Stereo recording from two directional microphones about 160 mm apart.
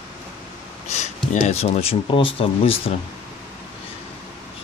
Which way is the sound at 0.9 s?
45° left (ahead or behind).